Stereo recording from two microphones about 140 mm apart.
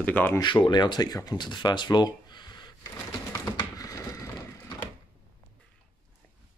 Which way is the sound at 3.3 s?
25° left (ahead or behind).